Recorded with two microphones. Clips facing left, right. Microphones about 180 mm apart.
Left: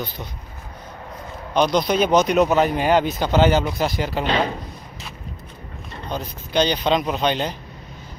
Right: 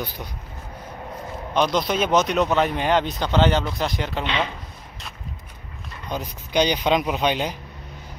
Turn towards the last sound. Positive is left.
turn(degrees=-10)  # may be behind; listen again after turning